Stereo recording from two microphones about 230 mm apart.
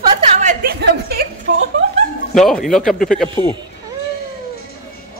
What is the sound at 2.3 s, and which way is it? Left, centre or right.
A man's voice, centre.